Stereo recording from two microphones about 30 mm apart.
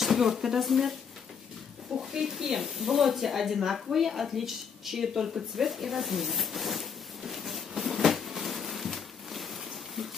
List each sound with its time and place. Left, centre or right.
0.0 s speech: centre
2.0 s speech: centre
2.5 s speech: centre
5.7 s zipper: centre